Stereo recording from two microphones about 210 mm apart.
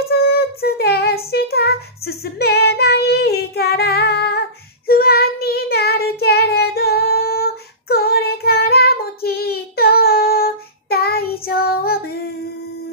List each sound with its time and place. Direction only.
0.1 s child singing: 45° left (ahead or behind)